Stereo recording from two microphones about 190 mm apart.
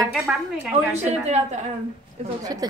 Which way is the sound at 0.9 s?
35° right (ahead or behind).